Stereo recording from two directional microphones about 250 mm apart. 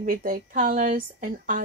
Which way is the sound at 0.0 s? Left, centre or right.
Right.